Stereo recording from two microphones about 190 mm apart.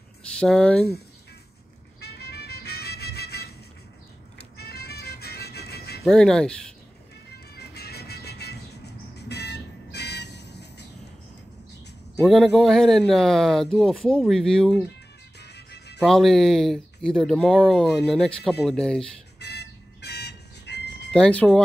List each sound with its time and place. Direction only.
0.2 s speech: 5° left (ahead or behind)
2.0 s music: 60° left (ahead or behind)
6.0 s speech: 5° left (ahead or behind)
7.5 s music: 55° left (ahead or behind)
12.3 s speech: centre (ahead or behind)
15.4 s music: 60° left (ahead or behind)
16.0 s speech: centre (ahead or behind)
19.4 s a sound: 60° left (ahead or behind)
21.1 s speech: 5° left (ahead or behind)